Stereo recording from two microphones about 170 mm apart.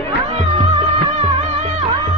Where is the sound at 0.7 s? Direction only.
25° right (ahead or behind).